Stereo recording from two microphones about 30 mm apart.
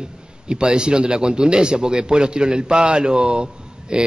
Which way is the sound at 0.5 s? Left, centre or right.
Right.